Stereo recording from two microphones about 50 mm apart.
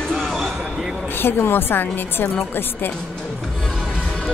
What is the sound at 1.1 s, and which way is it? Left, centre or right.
A woman's voice, left.